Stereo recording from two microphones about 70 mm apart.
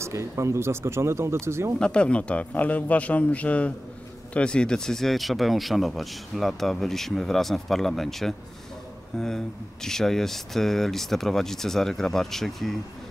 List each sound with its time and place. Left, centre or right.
0.0 s speech: right
1.8 s a man's voice: centre